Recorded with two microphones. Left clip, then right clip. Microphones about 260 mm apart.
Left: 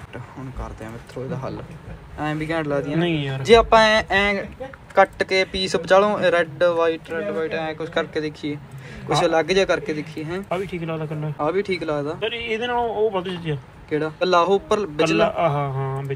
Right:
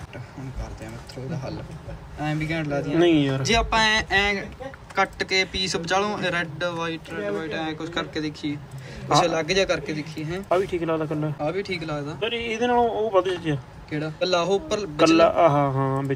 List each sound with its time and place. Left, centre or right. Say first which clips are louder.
1.3 s speech: left 3 dB; centre
3.0 s a man's voice: right 4 dB; right
3.4 s speech: left 10 dB; centre
10.5 s a man's voice: right 6 dB; right
11.4 s speech: left 8 dB; centre
12.2 s a man's voice: left 1 dB; right
13.8 s speech: left 4 dB; centre
15.2 s a man's voice: right 3 dB; right